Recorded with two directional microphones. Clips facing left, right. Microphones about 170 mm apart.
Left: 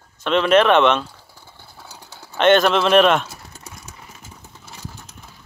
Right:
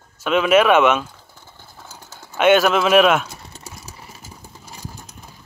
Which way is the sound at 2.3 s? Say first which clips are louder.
Even; 5° right (ahead or behind).